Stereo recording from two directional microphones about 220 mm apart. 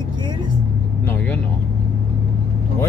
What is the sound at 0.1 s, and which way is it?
Vehicle, 20° right (ahead or behind).